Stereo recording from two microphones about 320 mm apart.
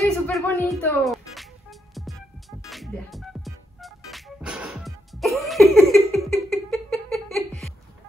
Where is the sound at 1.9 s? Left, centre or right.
Centre.